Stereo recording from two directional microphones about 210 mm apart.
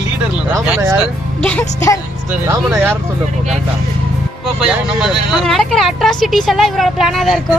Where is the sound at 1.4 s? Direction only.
10° left (ahead or behind).